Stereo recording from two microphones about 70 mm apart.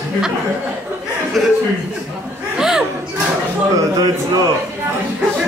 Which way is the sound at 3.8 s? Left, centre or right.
Right.